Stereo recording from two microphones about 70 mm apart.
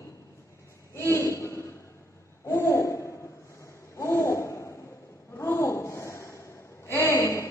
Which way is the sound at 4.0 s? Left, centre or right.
Left.